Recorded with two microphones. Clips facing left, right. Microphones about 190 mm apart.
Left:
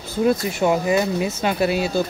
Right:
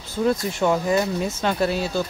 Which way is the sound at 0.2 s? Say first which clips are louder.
Left 2 dB; 10° left (ahead or behind).